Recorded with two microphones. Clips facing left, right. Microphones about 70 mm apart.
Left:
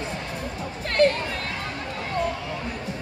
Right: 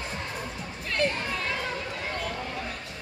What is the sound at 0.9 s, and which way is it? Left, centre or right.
Music, left.